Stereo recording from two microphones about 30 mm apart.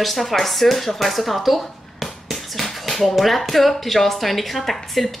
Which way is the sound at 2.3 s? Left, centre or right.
Centre.